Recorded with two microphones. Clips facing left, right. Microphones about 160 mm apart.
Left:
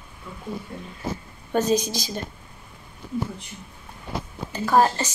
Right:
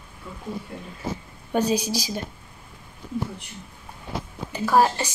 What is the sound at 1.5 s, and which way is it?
Speech, 10° right (ahead or behind).